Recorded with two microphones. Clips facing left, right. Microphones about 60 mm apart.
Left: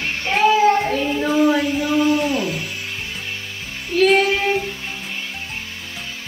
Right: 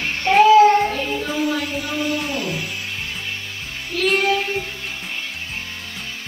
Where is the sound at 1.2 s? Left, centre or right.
Left.